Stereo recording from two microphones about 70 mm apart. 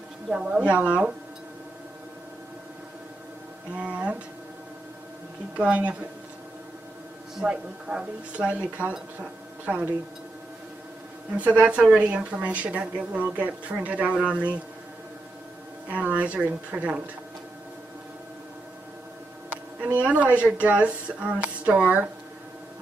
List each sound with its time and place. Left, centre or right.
0.3 s speech: centre
3.7 s speech: centre
5.6 s speech: centre
7.3 s speech: centre
11.3 s speech: centre
15.9 s speech: right
19.5 s a woman's voice: right